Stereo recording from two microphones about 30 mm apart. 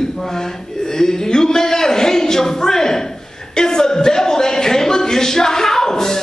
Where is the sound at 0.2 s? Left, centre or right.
Centre.